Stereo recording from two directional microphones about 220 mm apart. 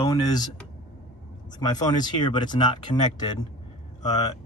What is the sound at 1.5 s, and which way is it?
Speech, 20° left (ahead or behind).